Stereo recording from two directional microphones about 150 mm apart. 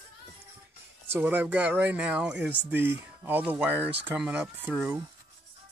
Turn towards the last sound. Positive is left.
turn(degrees=-10)  # may be behind; listen again after turning